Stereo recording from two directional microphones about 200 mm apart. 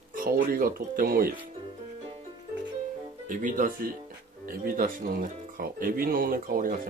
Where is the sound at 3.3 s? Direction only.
40° right (ahead or behind).